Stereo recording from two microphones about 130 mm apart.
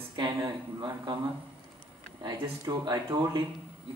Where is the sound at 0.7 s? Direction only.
30° right (ahead or behind).